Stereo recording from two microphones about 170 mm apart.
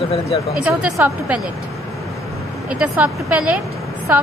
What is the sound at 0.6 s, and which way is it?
Speech, 5° right (ahead or behind).